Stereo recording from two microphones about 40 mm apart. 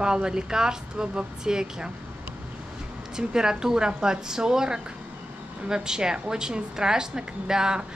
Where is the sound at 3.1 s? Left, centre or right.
Centre.